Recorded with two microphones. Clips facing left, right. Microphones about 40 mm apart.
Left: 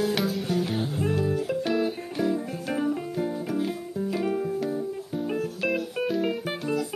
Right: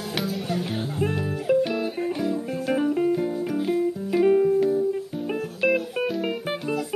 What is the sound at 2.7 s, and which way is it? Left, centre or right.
Music, centre.